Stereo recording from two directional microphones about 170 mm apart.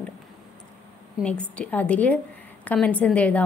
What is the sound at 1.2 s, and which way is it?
A woman's voice, 5° left (ahead or behind).